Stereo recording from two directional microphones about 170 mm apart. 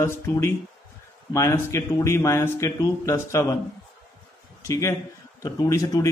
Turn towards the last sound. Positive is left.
turn(degrees=20)  # may be behind; listen again after turning